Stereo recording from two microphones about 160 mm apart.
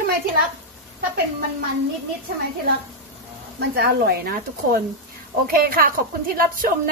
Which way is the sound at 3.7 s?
75° right (ahead or behind).